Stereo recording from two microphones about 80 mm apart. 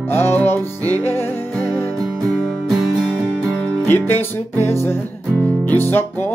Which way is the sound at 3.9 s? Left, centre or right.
Left.